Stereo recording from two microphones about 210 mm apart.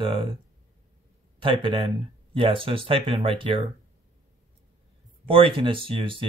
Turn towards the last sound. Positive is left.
turn(degrees=-25)  # may be behind; listen again after turning